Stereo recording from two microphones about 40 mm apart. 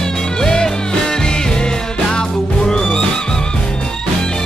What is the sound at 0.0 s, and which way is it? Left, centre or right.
Music, centre.